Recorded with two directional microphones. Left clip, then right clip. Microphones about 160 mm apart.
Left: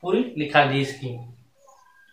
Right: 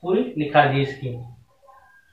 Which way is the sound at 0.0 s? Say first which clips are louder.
Right 1 dB; 20° left (ahead or behind).